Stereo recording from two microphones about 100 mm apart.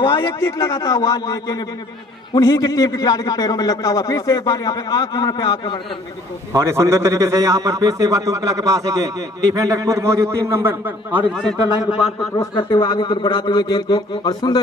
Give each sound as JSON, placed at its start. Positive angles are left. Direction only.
{"t": 0.0, "sound": "a sound", "side_deg": 55}
{"t": 0.3, "sound": "a man's voice", "side_deg": 30}
{"t": 6.5, "sound": "a man's voice", "side_deg": -30}
{"t": 12.5, "sound": "speech", "side_deg": 55}